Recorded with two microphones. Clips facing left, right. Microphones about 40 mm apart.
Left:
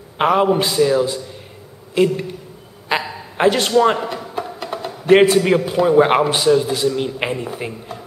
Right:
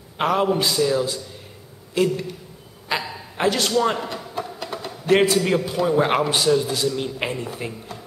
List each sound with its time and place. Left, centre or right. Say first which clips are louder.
0.2 s a man's voice: left 5 dB; centre